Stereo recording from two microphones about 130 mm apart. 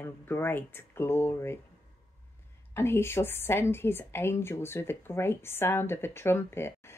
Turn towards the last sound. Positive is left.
turn(degrees=20)  # may be behind; listen again after turning